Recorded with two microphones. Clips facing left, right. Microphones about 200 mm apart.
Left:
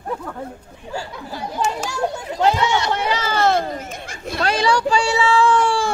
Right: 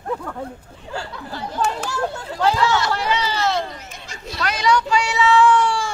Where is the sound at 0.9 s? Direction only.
15° left (ahead or behind).